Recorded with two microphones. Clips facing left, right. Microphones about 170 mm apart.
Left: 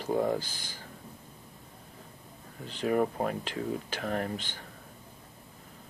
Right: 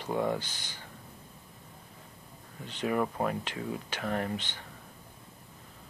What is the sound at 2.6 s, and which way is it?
Speech, 40° left (ahead or behind).